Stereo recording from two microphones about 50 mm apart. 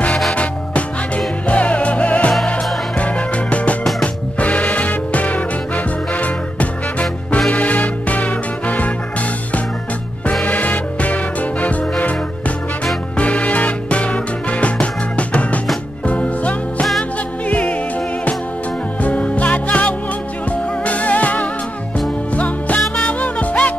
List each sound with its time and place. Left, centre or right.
0.3 s music: left
10.4 s music: left
18.9 s music: left